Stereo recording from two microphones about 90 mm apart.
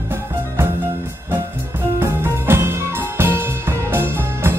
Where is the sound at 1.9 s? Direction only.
30° right (ahead or behind).